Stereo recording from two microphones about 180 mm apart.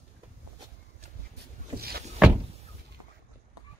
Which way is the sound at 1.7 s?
55° right (ahead or behind).